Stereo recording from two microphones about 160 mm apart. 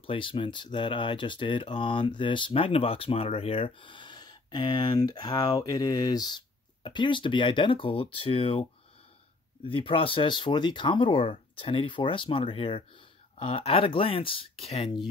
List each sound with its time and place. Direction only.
0.0 s speech: 35° left (ahead or behind)
9.7 s speech: 35° left (ahead or behind)